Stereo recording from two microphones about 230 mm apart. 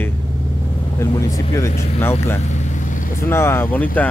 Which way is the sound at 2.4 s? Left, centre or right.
Left.